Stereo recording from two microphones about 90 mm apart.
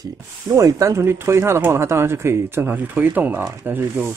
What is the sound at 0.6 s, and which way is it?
Speech, 35° right (ahead or behind).